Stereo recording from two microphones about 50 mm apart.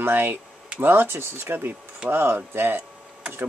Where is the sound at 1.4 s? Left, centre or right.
Right.